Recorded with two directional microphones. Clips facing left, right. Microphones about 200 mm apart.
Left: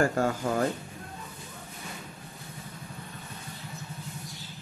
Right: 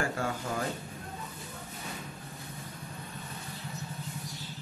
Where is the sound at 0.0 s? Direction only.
45° left (ahead or behind).